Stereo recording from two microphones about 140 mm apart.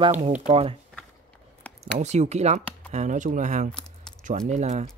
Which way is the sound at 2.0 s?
55° right (ahead or behind).